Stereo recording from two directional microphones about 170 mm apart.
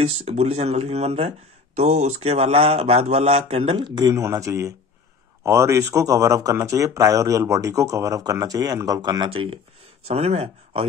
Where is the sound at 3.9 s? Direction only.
20° right (ahead or behind).